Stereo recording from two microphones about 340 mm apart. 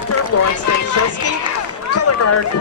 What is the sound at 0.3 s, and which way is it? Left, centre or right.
Speech, left.